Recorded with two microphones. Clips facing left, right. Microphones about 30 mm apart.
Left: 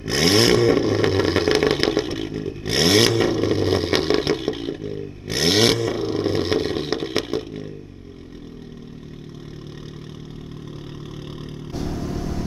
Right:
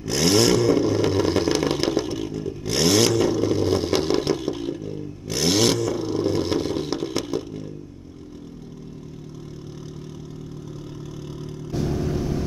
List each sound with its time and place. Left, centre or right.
0.0 s vehicle: left
11.7 s vehicle: centre